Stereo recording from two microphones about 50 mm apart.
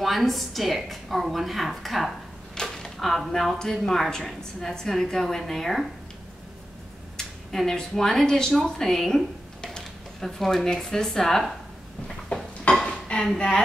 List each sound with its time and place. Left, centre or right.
0.0 s a woman's voice: centre
7.2 s speech: centre
12.3 s a sound: left